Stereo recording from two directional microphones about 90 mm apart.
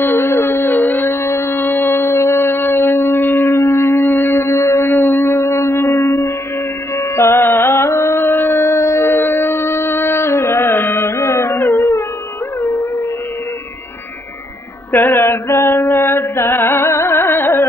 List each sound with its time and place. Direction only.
0.0 s howl: 25° left (ahead or behind)
3.5 s music: 30° left (ahead or behind)
11.5 s dog: 25° left (ahead or behind)
14.9 s music: 25° left (ahead or behind)